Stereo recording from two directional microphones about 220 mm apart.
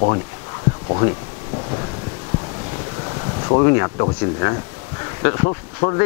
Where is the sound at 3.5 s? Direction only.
20° left (ahead or behind).